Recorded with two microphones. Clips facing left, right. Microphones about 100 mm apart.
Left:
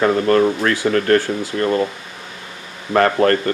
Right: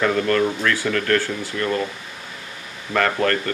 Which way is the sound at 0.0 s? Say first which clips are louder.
Left 5 dB; 30° left (ahead or behind).